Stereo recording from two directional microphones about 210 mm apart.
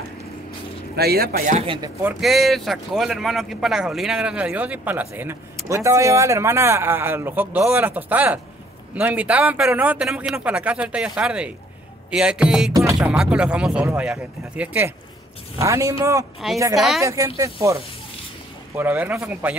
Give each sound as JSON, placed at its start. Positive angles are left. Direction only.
{"t": 0.9, "sound": "a man's voice", "side_deg": -45}
{"t": 2.0, "sound": "speech", "side_deg": 0}
{"t": 12.7, "sound": "music", "side_deg": -15}
{"t": 13.1, "sound": "speech", "side_deg": -5}
{"t": 16.7, "sound": "speech", "side_deg": 0}
{"t": 17.0, "sound": "speech", "side_deg": -15}
{"t": 18.8, "sound": "speech", "side_deg": -10}